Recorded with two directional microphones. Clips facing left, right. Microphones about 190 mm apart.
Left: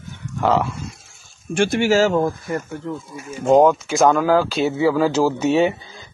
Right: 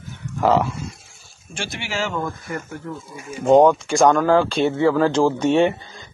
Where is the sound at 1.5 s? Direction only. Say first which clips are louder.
Left 12 dB; 50° left (ahead or behind).